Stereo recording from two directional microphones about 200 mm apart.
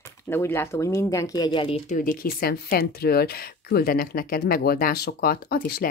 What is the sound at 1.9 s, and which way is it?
Speech, 45° left (ahead or behind).